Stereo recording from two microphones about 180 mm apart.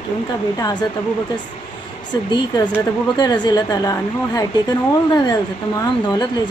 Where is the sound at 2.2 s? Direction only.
25° left (ahead or behind).